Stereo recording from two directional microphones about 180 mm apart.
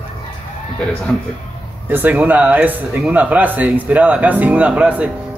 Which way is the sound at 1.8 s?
10° right (ahead or behind).